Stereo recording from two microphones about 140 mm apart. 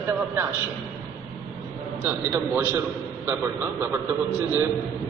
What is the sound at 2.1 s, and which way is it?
Speech, 15° right (ahead or behind).